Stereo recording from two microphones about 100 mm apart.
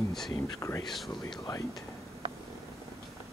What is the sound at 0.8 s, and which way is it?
Speech, centre (ahead or behind).